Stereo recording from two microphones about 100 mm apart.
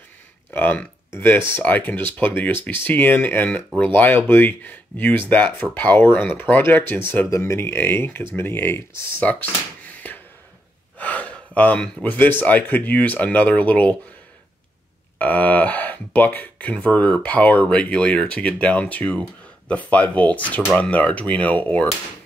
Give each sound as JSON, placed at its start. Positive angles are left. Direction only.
{"t": 0.5, "sound": "speech", "side_deg": 20}
{"t": 15.1, "sound": "speech", "side_deg": 15}